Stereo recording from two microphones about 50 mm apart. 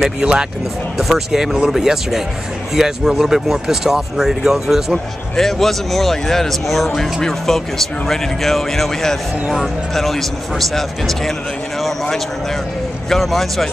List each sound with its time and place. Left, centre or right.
0.0 s speech: centre
0.9 s speech: centre
4.9 s speech: centre
13.1 s speech: centre